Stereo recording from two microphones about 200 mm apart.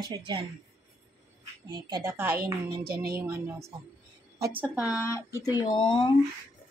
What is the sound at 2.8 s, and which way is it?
Child singing, 50° right (ahead or behind).